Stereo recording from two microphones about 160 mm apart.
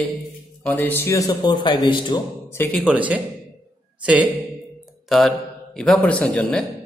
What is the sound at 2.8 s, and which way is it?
Speech, 10° right (ahead or behind).